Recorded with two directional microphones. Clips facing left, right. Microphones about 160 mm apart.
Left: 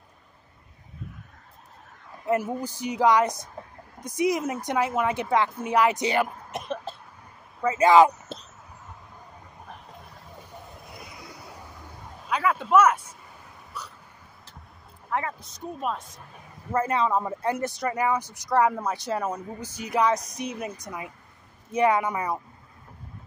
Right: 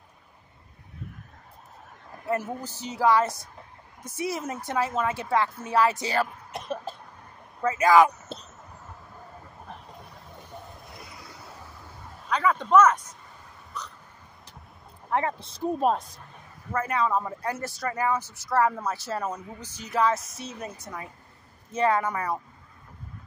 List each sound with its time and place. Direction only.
2.2 s speech: 15° left (ahead or behind)
6.9 s a sound: 10° right (ahead or behind)
7.7 s speech: 25° left (ahead or behind)
8.3 s a sound: centre (ahead or behind)
12.3 s speech: 10° left (ahead or behind)
13.7 s hiccup: 10° left (ahead or behind)
15.0 s speech: 30° right (ahead or behind)
16.7 s speech: 25° left (ahead or behind)